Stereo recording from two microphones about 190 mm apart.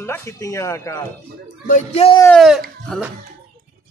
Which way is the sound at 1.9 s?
30° left (ahead or behind).